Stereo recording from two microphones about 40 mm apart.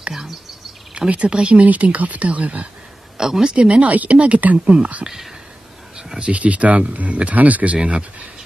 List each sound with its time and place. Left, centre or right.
0.9 s speech: right
1.7 s speech: right
3.2 s speech: centre
3.5 s speech: right
5.0 s speech: centre
5.9 s a sound: centre
6.2 s speech: right